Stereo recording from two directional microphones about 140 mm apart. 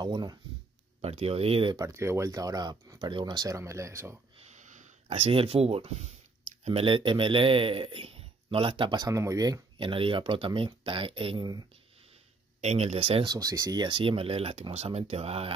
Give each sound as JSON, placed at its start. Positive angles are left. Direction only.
{"t": 0.0, "sound": "a man's voice", "side_deg": -30}
{"t": 1.0, "sound": "speech", "side_deg": -45}
{"t": 1.8, "sound": "speech", "side_deg": -20}
{"t": 4.5, "sound": "a man's voice", "side_deg": -60}
{"t": 12.5, "sound": "speech", "side_deg": -50}
{"t": 13.3, "sound": "speech", "side_deg": -25}